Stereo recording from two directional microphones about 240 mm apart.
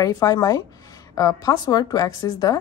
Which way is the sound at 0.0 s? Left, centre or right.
Centre.